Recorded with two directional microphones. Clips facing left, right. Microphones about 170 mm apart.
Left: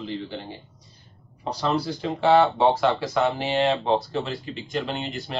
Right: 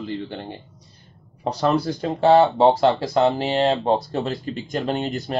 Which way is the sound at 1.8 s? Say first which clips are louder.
Right 2 dB; 40° right (ahead or behind).